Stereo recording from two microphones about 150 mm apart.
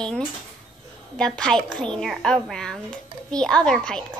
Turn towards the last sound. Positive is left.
turn(degrees=5)  # may be behind; listen again after turning